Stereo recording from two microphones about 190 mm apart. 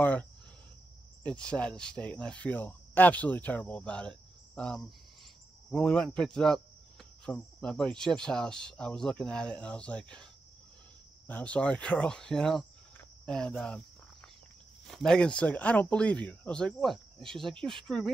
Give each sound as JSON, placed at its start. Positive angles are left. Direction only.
{"t": 0.0, "sound": "speech", "side_deg": 10}
{"t": 11.2, "sound": "speech", "side_deg": 5}
{"t": 14.9, "sound": "speech", "side_deg": 0}